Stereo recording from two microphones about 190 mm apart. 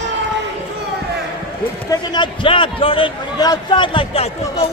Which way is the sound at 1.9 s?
20° left (ahead or behind).